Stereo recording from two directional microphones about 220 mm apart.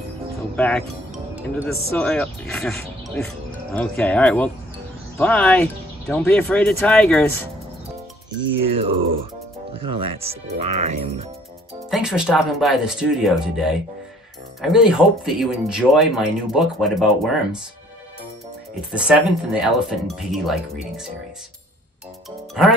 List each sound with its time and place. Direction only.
0.6 s speech: 5° left (ahead or behind)
9.8 s speech: 25° right (ahead or behind)
11.9 s speech: centre (ahead or behind)
18.9 s speech: 5° right (ahead or behind)
22.5 s speech: centre (ahead or behind)